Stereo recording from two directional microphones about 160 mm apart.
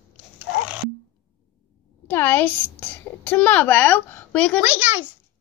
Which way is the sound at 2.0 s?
15° left (ahead or behind).